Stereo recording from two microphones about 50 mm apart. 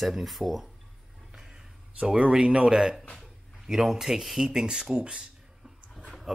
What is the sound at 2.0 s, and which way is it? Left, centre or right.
Speech, right.